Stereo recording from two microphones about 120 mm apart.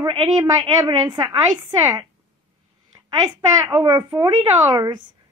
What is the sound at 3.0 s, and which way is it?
A woman's voice, 30° right (ahead or behind).